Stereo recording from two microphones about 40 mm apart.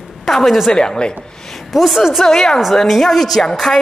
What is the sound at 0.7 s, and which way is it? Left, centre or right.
Speech, centre.